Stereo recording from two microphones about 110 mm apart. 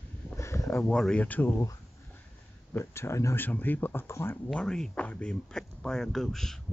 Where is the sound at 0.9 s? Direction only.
10° left (ahead or behind).